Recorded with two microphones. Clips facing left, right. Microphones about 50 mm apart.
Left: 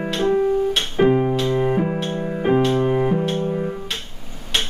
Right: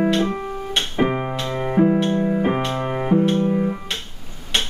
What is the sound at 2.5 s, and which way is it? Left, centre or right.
Music, right.